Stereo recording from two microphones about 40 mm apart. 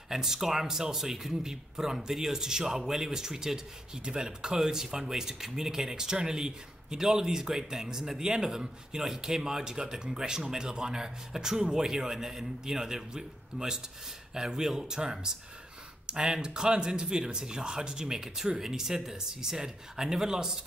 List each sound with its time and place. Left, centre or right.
0.1 s speech: centre